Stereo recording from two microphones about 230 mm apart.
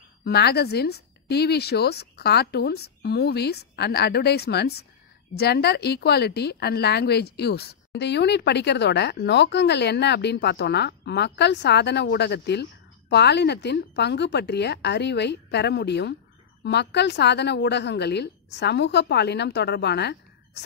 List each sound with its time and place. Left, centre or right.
0.2 s a woman's voice: left